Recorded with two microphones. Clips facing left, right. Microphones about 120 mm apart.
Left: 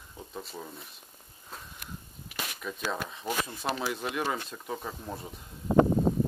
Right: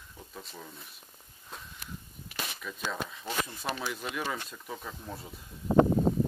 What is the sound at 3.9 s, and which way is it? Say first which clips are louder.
Speech: left 3 dB; 25° left (ahead or behind).